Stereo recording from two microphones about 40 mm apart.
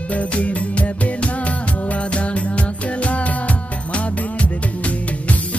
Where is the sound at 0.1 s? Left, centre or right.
Left.